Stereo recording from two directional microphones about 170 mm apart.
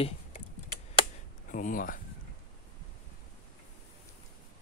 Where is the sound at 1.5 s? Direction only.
50° left (ahead or behind).